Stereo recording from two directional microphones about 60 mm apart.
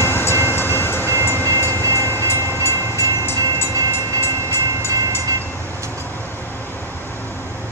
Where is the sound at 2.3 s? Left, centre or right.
Right.